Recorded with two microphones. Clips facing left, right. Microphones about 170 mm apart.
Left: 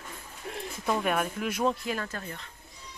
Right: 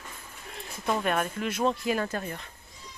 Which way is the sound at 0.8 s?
5° left (ahead or behind).